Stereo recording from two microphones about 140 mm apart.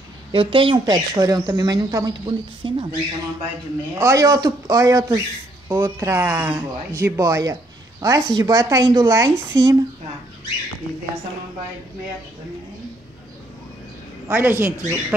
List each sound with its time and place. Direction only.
0.3 s speech: 40° right (ahead or behind)
4.0 s speech: 25° right (ahead or behind)
14.2 s speech: 15° right (ahead or behind)